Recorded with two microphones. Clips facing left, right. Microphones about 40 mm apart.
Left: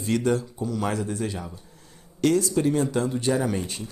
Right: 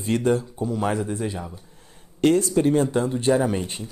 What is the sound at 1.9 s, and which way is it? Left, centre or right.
Speech, right.